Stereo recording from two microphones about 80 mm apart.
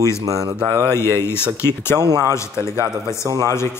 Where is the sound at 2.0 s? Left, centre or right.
Right.